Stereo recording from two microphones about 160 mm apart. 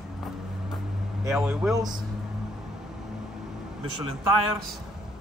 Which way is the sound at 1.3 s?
5° right (ahead or behind).